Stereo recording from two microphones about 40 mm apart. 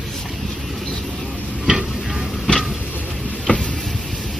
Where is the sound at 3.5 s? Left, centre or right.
Left.